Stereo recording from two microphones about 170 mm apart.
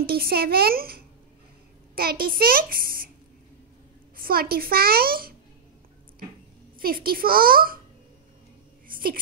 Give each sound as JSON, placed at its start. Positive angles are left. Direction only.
{"t": 0.0, "sound": "a child's voice", "side_deg": -65}
{"t": 4.2, "sound": "a child's voice", "side_deg": -60}
{"t": 6.8, "sound": "a child's voice", "side_deg": -60}
{"t": 8.8, "sound": "a sound", "side_deg": -55}